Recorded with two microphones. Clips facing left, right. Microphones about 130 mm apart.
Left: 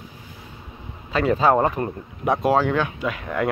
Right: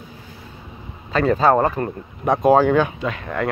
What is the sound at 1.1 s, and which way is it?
Speech, 10° left (ahead or behind).